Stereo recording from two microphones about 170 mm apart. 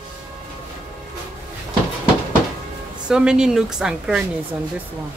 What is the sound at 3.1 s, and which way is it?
Speech, 5° right (ahead or behind).